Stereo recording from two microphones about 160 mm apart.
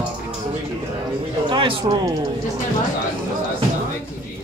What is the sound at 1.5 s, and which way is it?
Speech, 30° right (ahead or behind).